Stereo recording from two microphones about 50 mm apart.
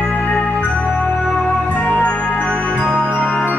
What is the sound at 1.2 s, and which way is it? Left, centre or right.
Music, centre.